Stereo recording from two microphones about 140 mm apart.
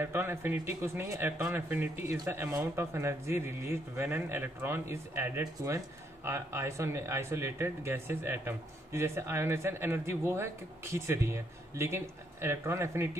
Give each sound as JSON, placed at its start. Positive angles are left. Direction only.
{"t": 0.0, "sound": "speech", "side_deg": -15}